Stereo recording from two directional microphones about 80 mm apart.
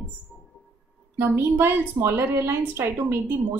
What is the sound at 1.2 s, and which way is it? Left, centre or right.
A woman's voice, right.